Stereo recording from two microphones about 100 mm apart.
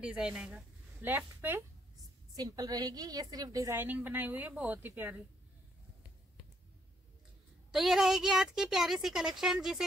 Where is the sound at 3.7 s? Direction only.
20° right (ahead or behind).